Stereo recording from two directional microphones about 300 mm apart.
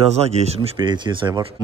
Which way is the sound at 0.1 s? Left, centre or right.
Right.